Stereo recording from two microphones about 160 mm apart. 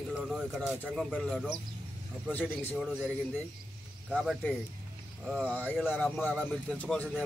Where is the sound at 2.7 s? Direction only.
5° right (ahead or behind).